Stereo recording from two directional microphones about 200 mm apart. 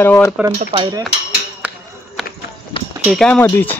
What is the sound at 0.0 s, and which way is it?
Speech, 10° left (ahead or behind).